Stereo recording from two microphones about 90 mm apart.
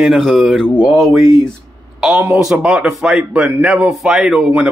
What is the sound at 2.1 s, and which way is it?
Speech, 25° right (ahead or behind).